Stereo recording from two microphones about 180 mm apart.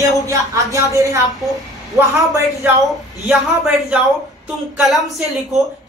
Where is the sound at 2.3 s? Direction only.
15° right (ahead or behind).